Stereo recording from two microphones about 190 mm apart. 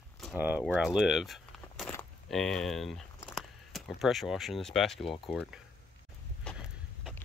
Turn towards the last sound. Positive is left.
turn(degrees=5)  # may be behind; listen again after turning